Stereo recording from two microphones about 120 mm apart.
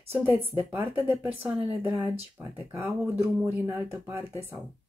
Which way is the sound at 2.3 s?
20° right (ahead or behind).